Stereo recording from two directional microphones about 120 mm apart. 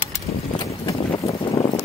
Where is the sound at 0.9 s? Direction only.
55° left (ahead or behind).